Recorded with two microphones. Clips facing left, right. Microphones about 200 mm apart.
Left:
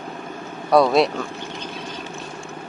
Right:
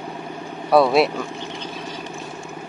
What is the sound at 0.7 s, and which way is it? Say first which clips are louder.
Speech: even; 5° right (ahead or behind).